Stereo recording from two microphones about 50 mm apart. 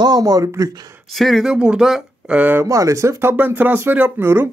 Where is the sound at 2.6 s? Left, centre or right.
Right.